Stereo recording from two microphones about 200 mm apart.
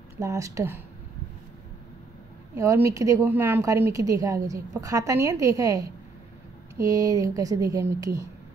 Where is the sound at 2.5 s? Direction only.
15° right (ahead or behind).